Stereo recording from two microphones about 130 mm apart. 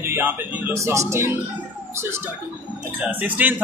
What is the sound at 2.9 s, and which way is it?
Speech, 10° right (ahead or behind).